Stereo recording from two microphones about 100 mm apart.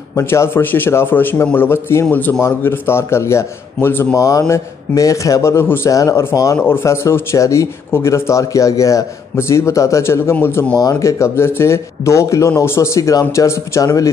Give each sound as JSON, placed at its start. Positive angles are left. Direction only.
{"t": 0.1, "sound": "a man's voice", "side_deg": 30}
{"t": 10.8, "sound": "speech", "side_deg": 35}